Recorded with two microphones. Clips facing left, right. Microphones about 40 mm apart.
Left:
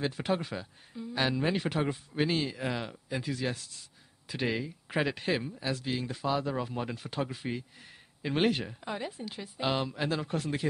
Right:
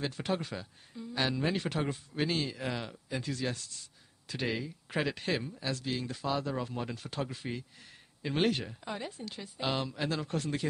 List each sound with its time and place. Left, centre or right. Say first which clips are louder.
0.0 s speech: left 3 dB; centre